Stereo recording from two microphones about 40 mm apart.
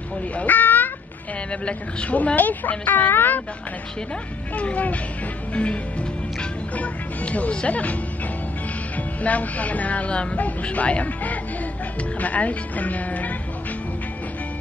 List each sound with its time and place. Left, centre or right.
0.4 s a sound: left
1.5 s speech: left
4.6 s speech: left
6.7 s music: left
8.9 s speech: left